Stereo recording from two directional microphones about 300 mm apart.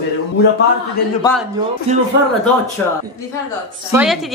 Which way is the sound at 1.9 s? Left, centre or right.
Right.